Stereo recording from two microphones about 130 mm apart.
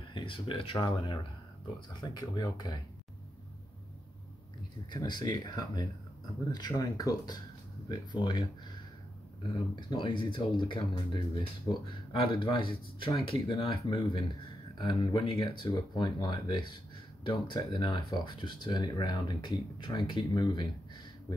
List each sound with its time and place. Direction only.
0.1 s speech: 40° left (ahead or behind)
2.0 s speech: 35° left (ahead or behind)
4.9 s speech: 35° left (ahead or behind)
9.8 s speech: 35° left (ahead or behind)